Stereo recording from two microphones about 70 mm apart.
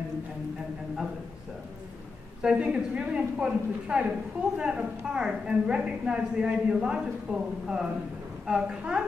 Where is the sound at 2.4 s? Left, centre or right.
Centre.